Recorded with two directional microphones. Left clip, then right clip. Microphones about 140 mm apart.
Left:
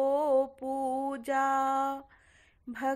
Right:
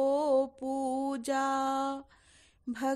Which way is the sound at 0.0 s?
50° right (ahead or behind).